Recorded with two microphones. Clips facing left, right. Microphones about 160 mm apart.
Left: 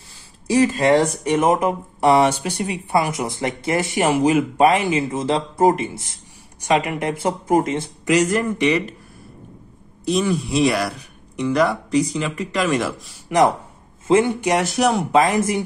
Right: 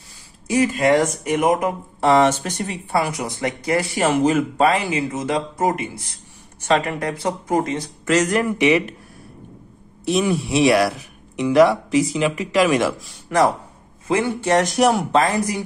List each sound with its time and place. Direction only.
0.5 s speech: 30° left (ahead or behind)
2.0 s speech: 10° left (ahead or behind)
3.1 s speech: 25° left (ahead or behind)
6.6 s speech: 15° left (ahead or behind)
8.1 s speech: 10° left (ahead or behind)
8.5 s speech: 5° right (ahead or behind)
10.0 s speech: centre (ahead or behind)
14.0 s speech: 20° left (ahead or behind)
14.6 s speech: centre (ahead or behind)
15.1 s speech: 20° left (ahead or behind)